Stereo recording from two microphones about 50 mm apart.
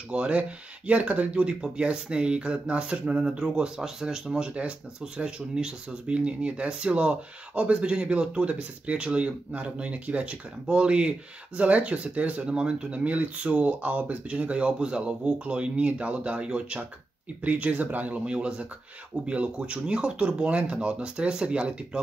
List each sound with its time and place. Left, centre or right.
0.1 s speech: right
18.2 s speech: centre